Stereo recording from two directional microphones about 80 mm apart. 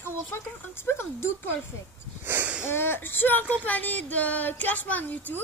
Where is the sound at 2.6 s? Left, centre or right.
Left.